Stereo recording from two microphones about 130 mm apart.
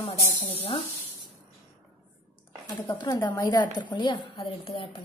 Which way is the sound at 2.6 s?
35° left (ahead or behind).